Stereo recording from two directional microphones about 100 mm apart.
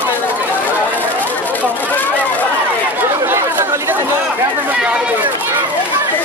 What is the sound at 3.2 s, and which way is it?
Chatter, 25° right (ahead or behind).